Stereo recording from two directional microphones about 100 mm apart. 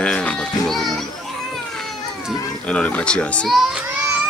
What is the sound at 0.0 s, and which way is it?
Music, 10° left (ahead or behind).